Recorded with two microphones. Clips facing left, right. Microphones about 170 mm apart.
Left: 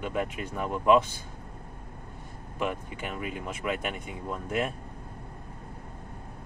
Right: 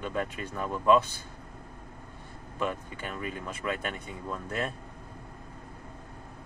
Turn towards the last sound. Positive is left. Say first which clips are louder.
# left 3 dB
turn(degrees=15)  # may be behind; listen again after turning